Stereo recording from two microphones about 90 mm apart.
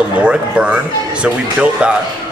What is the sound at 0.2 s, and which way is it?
A man's voice, 10° right (ahead or behind).